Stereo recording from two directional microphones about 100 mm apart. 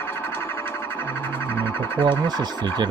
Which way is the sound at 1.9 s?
50° right (ahead or behind).